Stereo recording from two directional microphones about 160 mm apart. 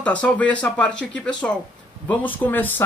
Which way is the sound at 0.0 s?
10° left (ahead or behind).